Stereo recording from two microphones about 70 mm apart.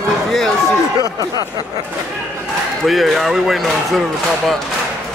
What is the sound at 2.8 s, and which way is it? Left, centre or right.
Speech, centre.